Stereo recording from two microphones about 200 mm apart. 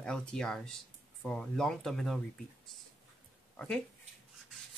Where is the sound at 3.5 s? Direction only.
5° left (ahead or behind).